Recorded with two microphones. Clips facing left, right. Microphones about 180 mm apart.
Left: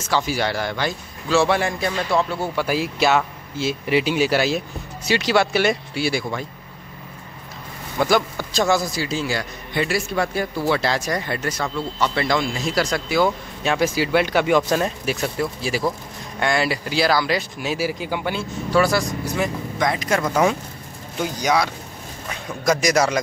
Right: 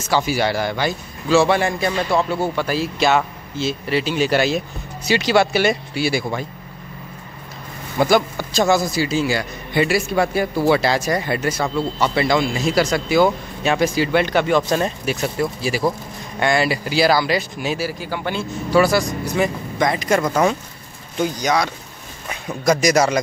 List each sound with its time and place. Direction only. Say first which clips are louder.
0.1 s speech: right 3 dB; 5° right (ahead or behind)
2.5 s speech: right 1 dB; 10° left (ahead or behind)
8.0 s speech: right 3 dB; centre (ahead or behind)
17.7 s speech: left 1 dB; 15° left (ahead or behind)
18.2 s speech: right 1 dB; 5° left (ahead or behind)